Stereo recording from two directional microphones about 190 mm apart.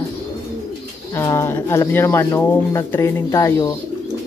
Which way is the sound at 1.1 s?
15° left (ahead or behind).